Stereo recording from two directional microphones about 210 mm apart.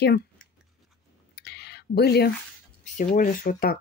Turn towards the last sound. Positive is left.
turn(degrees=40)  # may be behind; listen again after turning